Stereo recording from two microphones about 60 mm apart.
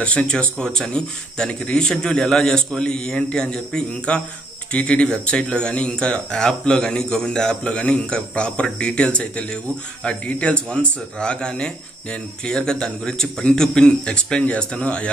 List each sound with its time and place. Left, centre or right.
0.0 s speech: centre